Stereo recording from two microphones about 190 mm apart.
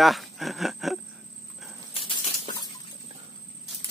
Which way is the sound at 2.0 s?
25° left (ahead or behind).